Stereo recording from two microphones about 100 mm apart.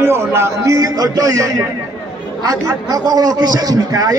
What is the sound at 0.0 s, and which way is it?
A man's voice, 25° right (ahead or behind).